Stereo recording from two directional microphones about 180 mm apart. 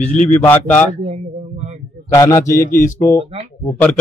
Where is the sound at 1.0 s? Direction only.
35° right (ahead or behind).